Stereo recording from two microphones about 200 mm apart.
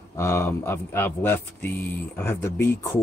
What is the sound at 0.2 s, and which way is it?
Speech, 15° left (ahead or behind).